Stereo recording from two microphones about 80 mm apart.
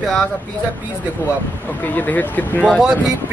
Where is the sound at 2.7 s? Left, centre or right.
Centre.